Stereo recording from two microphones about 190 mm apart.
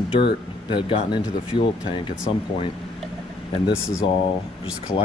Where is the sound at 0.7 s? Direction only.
25° left (ahead or behind).